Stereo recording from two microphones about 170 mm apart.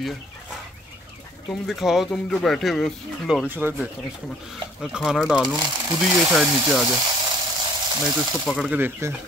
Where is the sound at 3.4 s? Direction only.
10° right (ahead or behind).